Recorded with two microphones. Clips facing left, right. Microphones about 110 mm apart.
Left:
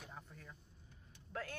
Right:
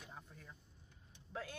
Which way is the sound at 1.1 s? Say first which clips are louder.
Left 1 dB; 15° right (ahead or behind).